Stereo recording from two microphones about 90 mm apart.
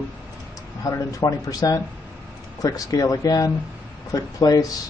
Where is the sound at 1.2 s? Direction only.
45° left (ahead or behind).